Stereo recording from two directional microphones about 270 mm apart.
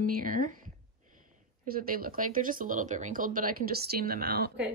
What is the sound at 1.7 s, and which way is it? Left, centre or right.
Speech, right.